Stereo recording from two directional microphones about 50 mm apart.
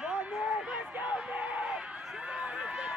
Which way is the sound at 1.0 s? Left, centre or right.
Right.